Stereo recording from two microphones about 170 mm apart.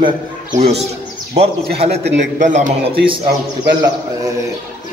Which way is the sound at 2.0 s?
90° right.